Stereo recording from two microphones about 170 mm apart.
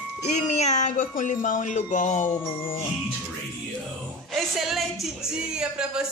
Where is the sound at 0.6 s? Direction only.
45° left (ahead or behind).